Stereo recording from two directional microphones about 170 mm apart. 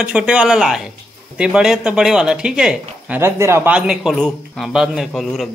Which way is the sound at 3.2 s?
15° right (ahead or behind).